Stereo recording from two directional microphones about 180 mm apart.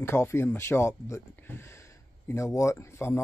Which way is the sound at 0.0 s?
15° left (ahead or behind).